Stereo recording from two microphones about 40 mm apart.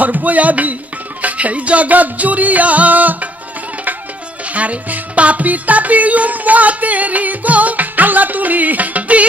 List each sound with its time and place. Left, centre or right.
0.0 s music: right
4.5 s music: right